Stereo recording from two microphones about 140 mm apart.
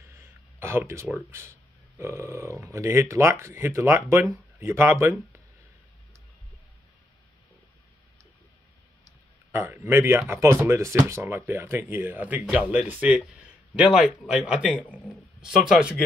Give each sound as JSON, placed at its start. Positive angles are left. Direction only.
{"t": 0.0, "sound": "speech", "side_deg": -20}
{"t": 9.5, "sound": "a man's voice", "side_deg": -15}